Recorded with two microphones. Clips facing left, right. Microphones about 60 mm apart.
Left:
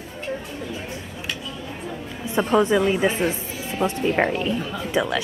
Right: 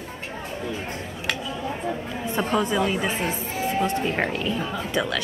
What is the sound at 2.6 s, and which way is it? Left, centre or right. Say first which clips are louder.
Speech: left 4 dB; left.